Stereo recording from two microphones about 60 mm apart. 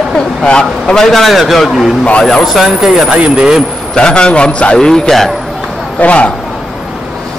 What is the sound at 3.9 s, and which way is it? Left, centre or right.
Speech, centre.